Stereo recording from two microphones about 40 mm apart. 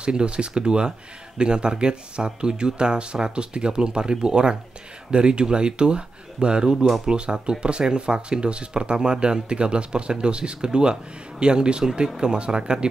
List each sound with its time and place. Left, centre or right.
0.0 s speech: right